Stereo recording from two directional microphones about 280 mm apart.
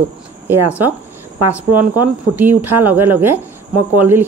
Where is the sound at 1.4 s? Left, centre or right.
Centre.